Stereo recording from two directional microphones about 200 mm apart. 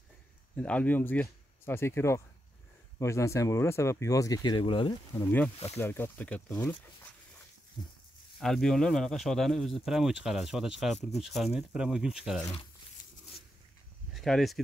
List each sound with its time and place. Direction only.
0.6 s speech: 5° left (ahead or behind); by 5.2 s 25° left (ahead or behind)
5.8 s speech: 10° left (ahead or behind)
8.4 s speech: centre (ahead or behind)
14.1 s speech: centre (ahead or behind)